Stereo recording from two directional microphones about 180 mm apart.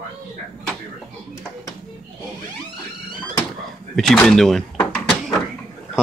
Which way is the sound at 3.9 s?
5° left (ahead or behind).